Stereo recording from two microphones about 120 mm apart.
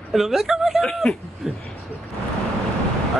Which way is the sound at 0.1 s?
5° right (ahead or behind).